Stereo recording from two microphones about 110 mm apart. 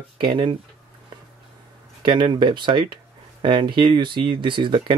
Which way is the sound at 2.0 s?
45° right (ahead or behind).